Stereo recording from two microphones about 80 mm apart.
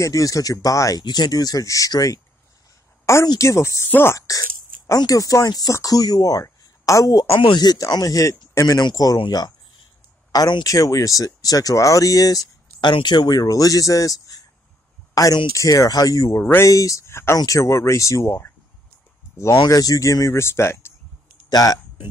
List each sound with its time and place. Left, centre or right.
0.0 s speech: left
1.0 s speech: left
3.3 s speech: left
4.3 s speech: left
6.4 s a sound: left
7.3 s speech: left
7.9 s speech: left
8.9 s speech: left
10.6 s speech: left
12.8 s speech: left
16.3 s speech: left
16.6 s speech: left
19.7 s speech: left
21.5 s speech: left